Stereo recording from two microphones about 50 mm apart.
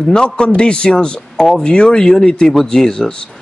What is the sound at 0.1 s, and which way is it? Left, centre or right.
Speech, centre.